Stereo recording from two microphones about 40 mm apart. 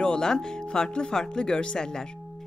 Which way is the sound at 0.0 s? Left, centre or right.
Centre.